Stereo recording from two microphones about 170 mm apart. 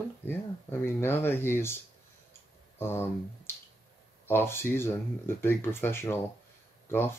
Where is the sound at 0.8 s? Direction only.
15° left (ahead or behind).